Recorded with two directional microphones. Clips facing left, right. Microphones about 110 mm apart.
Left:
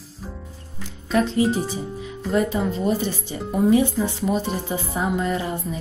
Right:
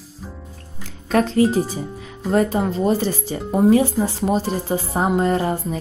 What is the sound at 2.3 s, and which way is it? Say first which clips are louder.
Speech: right 3 dB; 40° right (ahead or behind).